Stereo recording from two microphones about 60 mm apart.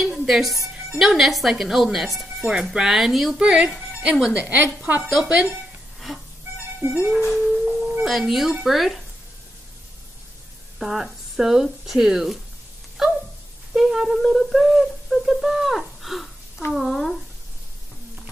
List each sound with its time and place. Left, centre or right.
0.0 s speech: centre
3.3 s a woman's voice: centre
5.9 s a sound: centre
6.8 s a woman's voice: right
7.2 s music: centre
8.1 s speech: centre
10.8 s speech: centre
13.0 s a sound: centre
13.7 s speech: centre